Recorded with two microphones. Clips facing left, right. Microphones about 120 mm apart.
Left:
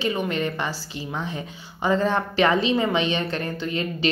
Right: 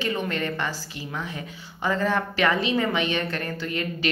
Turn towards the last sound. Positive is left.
turn(degrees=25)  # may be behind; listen again after turning